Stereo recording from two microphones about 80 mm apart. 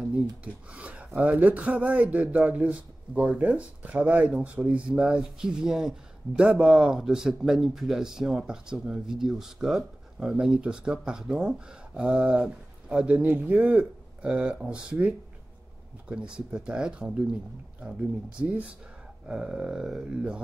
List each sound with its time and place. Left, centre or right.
0.0 s speech: centre
18.5 s speech: centre
19.2 s a sound: centre